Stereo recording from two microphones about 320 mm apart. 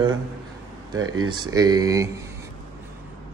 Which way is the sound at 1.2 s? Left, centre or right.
Centre.